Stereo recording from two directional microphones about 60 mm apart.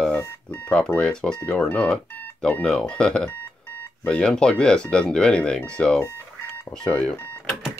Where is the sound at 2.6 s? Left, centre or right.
Centre.